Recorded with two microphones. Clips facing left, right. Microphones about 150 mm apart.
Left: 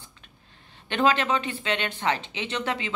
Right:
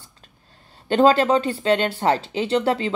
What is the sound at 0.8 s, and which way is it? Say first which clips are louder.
A woman's voice: right 7 dB; 35° right (ahead or behind).